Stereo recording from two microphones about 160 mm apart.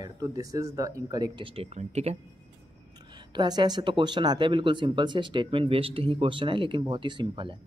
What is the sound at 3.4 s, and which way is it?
Speech, 25° right (ahead or behind).